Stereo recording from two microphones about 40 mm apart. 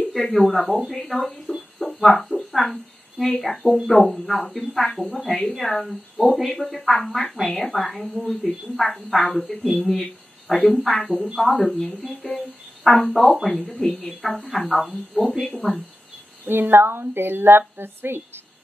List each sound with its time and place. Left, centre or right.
0.1 s a woman's voice: centre
1.8 s a sound: centre
3.3 s a woman's voice: centre
13.7 s a woman's voice: centre
15.6 s speech: centre
16.4 s speech: right